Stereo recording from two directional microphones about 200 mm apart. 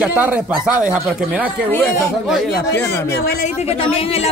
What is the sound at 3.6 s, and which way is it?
Speech, 30° left (ahead or behind).